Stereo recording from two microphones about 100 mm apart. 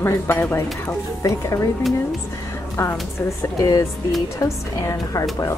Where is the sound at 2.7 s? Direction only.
30° left (ahead or behind).